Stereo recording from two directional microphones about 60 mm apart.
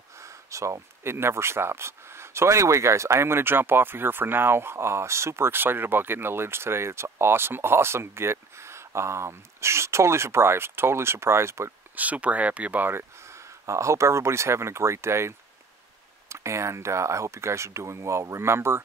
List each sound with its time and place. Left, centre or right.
0.2 s speech: right
11.9 s speech: right
12.9 s speech: right